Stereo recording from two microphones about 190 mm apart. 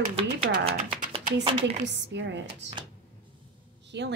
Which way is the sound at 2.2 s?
65° right (ahead or behind).